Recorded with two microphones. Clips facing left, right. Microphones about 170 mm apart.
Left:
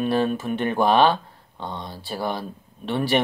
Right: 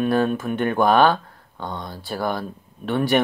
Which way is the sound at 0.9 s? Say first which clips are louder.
Right 1 dB; 25° left (ahead or behind).